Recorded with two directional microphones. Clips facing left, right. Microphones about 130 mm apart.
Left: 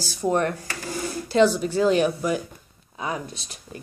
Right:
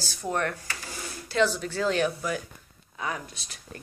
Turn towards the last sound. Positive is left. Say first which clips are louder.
# left 5 dB
turn(degrees=20)  # may be behind; listen again after turning